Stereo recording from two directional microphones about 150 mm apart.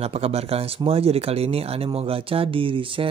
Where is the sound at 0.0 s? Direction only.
40° right (ahead or behind).